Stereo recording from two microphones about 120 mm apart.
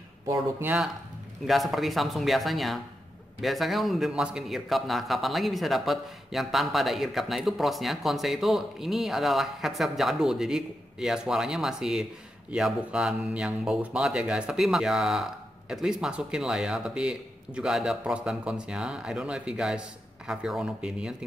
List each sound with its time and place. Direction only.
0.3 s speech: 15° right (ahead or behind)
1.5 s a man's voice: centre (ahead or behind)